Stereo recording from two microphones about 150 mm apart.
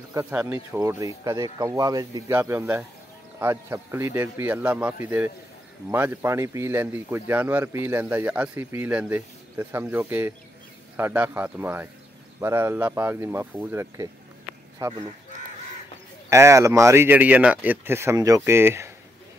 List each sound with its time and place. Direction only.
0.1 s speech: 15° right (ahead or behind)
0.7 s speech: 25° right (ahead or behind)
14.8 s speech: 25° right (ahead or behind)
16.3 s speech: 20° right (ahead or behind)